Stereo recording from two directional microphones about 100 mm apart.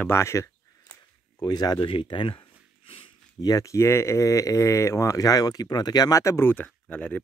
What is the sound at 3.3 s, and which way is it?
Speech, 35° left (ahead or behind).